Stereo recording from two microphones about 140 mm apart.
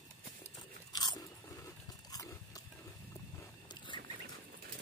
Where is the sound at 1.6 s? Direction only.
25° left (ahead or behind).